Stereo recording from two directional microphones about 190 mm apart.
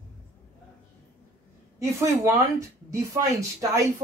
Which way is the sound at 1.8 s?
15° right (ahead or behind).